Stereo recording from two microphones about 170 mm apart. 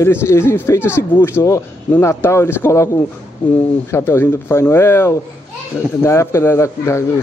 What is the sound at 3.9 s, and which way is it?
Speech, 15° left (ahead or behind).